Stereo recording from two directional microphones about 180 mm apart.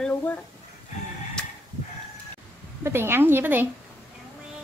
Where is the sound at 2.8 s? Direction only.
15° right (ahead or behind).